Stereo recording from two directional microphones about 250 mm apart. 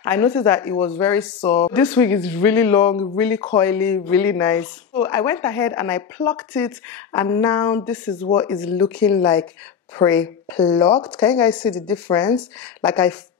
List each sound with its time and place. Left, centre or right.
0.1 s speech: centre
10.6 s speech: left
11.1 s speech: centre